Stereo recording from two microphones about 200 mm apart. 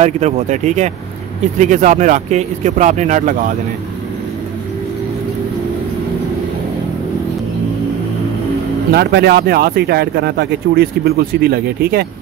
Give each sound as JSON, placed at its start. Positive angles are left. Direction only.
{"t": 0.0, "sound": "speech", "side_deg": -35}
{"t": 8.9, "sound": "speech", "side_deg": -55}